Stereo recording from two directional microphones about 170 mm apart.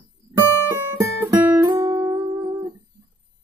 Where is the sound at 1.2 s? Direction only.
20° right (ahead or behind).